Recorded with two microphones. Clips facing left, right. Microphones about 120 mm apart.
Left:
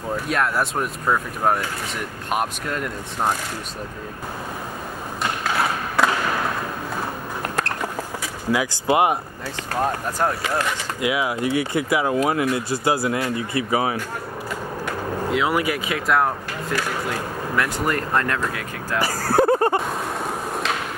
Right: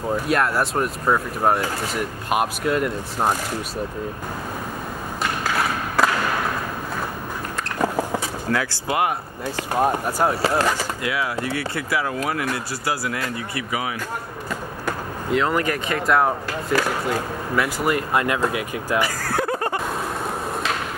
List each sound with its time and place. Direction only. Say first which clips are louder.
0.3 s speech: right 1 dB; centre (ahead or behind)
8.5 s speech: left 2 dB; 10° left (ahead or behind)
8.8 s speech: left 5 dB; 20° left (ahead or behind)
9.8 s speech: right 2 dB; 10° right (ahead or behind)
10.4 s speech: right 4 dB; 35° right (ahead or behind)
11.0 s speech: left 2 dB; 15° left (ahead or behind); by 13.9 s 30° left (ahead or behind)
15.3 s speech: right 2 dB; 10° left (ahead or behind); by 18.4 s 10° right (ahead or behind)
18.9 s a sound: left 5 dB; 35° left (ahead or behind)